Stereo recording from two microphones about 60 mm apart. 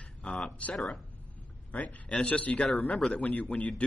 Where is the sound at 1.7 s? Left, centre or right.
Left.